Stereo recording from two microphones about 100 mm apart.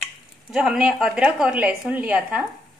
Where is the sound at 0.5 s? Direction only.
10° right (ahead or behind).